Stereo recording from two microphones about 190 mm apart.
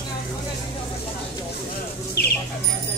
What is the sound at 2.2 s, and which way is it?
Bird, 55° left (ahead or behind).